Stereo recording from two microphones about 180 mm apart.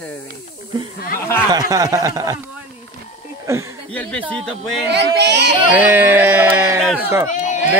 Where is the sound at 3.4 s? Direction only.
15° right (ahead or behind).